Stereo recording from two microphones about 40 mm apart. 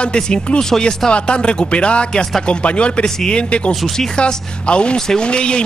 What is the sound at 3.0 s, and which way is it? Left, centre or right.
Speech, centre.